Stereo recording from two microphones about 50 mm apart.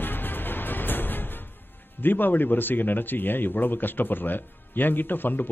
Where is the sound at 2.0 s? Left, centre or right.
Left.